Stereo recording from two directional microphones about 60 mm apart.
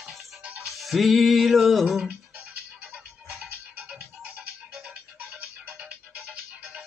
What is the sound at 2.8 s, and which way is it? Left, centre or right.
Music, right.